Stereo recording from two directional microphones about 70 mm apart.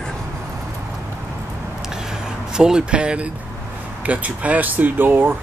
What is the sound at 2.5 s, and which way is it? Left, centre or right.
Speech, centre.